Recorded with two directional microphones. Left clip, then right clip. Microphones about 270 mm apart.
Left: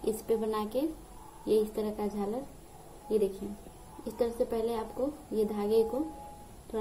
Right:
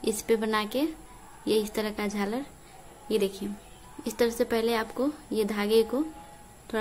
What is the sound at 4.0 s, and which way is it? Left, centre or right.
A woman's voice, right.